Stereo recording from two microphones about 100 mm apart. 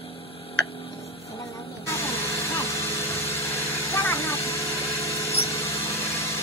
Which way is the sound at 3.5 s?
25° left (ahead or behind).